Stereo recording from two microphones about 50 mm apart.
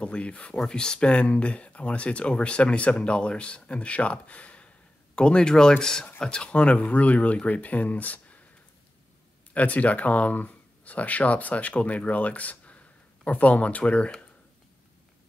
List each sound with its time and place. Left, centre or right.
0.0 s speech: left
9.5 s speech: left